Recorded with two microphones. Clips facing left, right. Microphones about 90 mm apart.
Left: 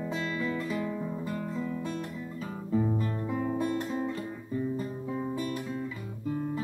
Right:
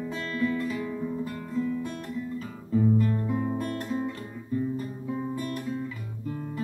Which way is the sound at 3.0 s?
15° left (ahead or behind).